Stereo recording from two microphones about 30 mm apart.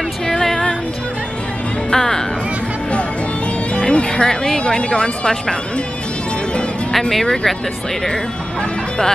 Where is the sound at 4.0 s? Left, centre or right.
Left.